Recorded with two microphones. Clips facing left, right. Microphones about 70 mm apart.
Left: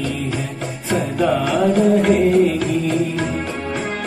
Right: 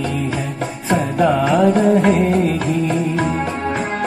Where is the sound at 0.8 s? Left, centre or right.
Right.